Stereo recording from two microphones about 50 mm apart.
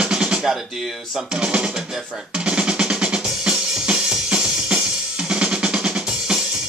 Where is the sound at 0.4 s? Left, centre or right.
Centre.